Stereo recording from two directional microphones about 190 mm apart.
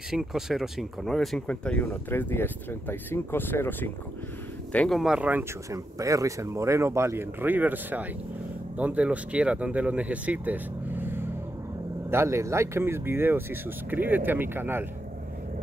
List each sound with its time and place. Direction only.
0.1 s speech: centre (ahead or behind)